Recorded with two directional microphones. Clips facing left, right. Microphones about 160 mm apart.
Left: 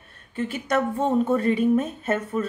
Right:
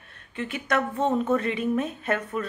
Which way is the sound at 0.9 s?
10° left (ahead or behind).